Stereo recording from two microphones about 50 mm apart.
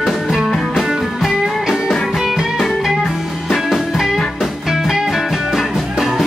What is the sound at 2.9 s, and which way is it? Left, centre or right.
Music, centre.